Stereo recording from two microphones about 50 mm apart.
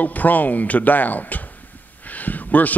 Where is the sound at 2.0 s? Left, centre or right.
Left.